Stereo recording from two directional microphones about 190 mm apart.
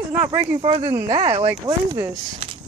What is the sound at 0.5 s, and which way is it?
Speech, 30° right (ahead or behind).